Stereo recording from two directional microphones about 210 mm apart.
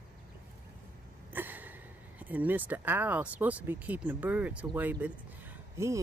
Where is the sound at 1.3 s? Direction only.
10° right (ahead or behind).